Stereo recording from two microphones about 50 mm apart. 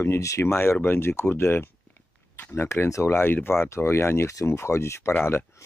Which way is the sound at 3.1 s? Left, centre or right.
Left.